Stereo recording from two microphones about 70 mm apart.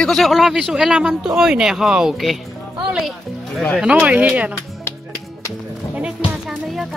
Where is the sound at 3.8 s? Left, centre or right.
Centre.